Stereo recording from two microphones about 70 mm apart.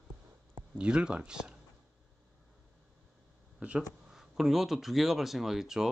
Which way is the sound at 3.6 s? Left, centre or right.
Centre.